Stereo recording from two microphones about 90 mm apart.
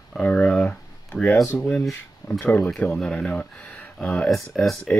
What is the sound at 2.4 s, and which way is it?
Speech, 20° left (ahead or behind).